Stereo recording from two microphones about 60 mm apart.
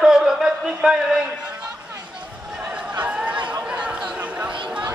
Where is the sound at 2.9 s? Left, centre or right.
Right.